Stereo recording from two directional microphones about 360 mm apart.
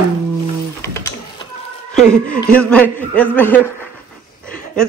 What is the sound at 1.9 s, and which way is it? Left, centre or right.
A man's voice, centre.